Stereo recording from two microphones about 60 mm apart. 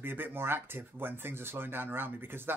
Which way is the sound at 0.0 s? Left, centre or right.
Right.